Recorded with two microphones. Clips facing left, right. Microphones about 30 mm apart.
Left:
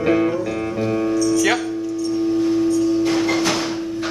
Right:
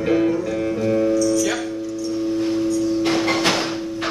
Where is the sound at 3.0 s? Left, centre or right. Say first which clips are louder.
Even; right.